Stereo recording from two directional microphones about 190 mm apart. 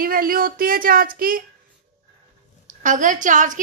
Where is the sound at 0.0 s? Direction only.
50° right (ahead or behind).